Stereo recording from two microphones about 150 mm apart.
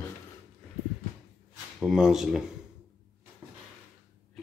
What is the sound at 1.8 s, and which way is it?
Speech, 5° right (ahead or behind).